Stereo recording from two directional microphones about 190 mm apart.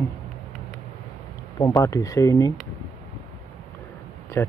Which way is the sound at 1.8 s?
15° left (ahead or behind).